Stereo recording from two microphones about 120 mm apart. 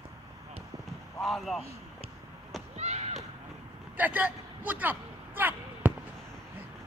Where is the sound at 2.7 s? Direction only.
65° right (ahead or behind).